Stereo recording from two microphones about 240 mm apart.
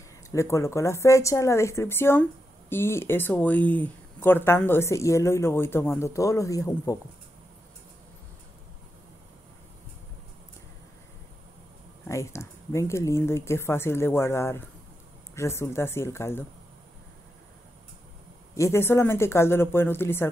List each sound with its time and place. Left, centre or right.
0.3 s speech: centre
12.1 s speech: centre
18.6 s speech: centre